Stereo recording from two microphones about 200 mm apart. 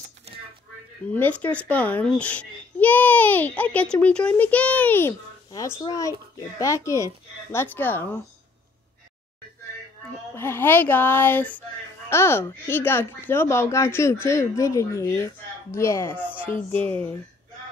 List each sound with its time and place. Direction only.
1.1 s a child's voice: 10° left (ahead or behind)
10.3 s a child's voice: 10° left (ahead or behind)